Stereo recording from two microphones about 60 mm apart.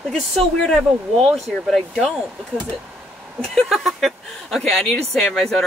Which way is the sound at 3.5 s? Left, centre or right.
Centre.